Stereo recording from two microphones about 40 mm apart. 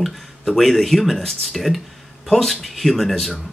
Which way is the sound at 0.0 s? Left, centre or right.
Centre.